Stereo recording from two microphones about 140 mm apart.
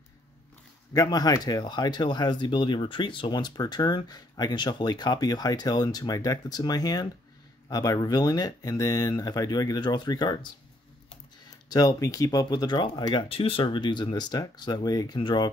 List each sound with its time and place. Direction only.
0.9 s speech: 25° left (ahead or behind)
11.7 s speech: 25° left (ahead or behind)